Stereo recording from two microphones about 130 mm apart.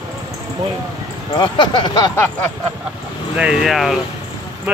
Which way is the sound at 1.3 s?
40° left (ahead or behind).